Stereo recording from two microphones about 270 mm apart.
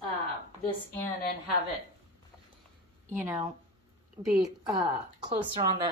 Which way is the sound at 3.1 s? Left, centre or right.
Centre.